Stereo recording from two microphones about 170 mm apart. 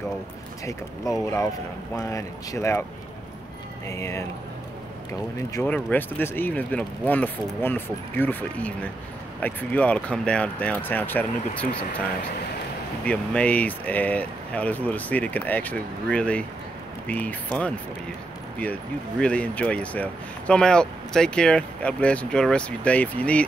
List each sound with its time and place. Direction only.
1.1 s speech: 20° left (ahead or behind)
3.8 s speech: 15° left (ahead or behind)
5.5 s speech: 10° left (ahead or behind)
13.0 s speech: 10° left (ahead or behind)